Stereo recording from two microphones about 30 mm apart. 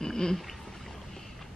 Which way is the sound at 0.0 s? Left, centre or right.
Centre.